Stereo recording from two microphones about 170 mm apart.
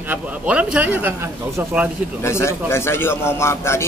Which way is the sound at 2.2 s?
15° left (ahead or behind).